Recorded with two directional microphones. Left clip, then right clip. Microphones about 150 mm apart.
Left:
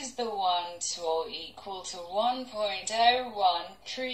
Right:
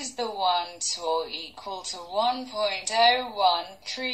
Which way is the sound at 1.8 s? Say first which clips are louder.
Right 3 dB; 30° right (ahead or behind).